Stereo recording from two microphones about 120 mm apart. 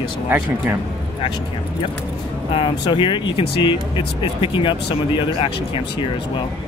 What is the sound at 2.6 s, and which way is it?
Speech, 40° left (ahead or behind).